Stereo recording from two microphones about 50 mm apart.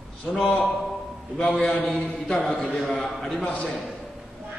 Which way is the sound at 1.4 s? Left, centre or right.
Centre.